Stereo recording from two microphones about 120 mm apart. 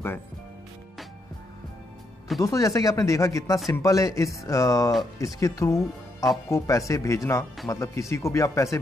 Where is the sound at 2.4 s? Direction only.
25° left (ahead or behind).